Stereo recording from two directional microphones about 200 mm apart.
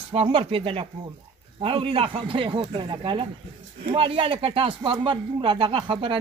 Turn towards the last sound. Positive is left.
turn(degrees=-25)  # may be behind; listen again after turning